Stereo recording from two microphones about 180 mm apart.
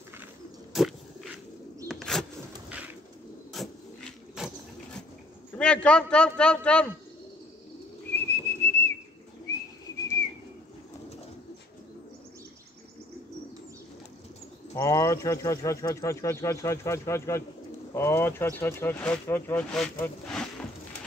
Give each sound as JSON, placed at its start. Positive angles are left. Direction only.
{"t": 1.9, "sound": "bird", "side_deg": 0}
{"t": 3.5, "sound": "a sound", "side_deg": 0}
{"t": 5.5, "sound": "a man's voice", "side_deg": 5}
{"t": 8.3, "sound": "whistling", "side_deg": 15}
{"t": 14.8, "sound": "speech", "side_deg": 15}